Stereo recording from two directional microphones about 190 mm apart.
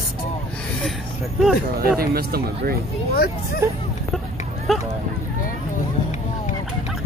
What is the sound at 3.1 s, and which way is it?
Speech, 55° left (ahead or behind).